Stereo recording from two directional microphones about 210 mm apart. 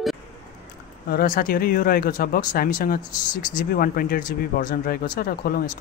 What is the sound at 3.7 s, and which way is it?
Speech, 45° left (ahead or behind).